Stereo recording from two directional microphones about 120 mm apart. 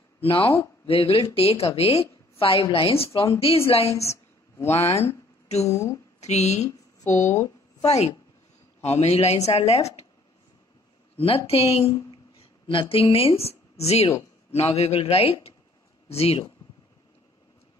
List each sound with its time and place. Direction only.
0.2 s a woman's voice: 50° left (ahead or behind)
3.9 s speech: 25° left (ahead or behind)
6.2 s a woman's voice: 70° left (ahead or behind)
7.8 s a woman's voice: 65° left (ahead or behind)
11.1 s a woman's voice: 55° left (ahead or behind)